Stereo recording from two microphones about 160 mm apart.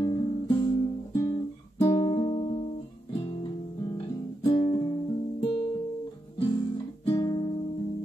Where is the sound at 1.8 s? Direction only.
25° left (ahead or behind).